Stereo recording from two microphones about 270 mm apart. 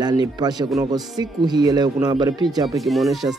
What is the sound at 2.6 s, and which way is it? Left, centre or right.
Speech, centre.